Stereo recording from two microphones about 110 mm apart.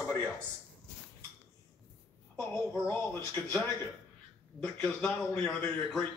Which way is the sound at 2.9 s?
15° left (ahead or behind).